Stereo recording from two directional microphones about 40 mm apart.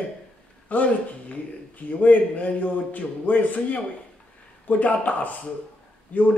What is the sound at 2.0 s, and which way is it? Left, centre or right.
A man's voice, left.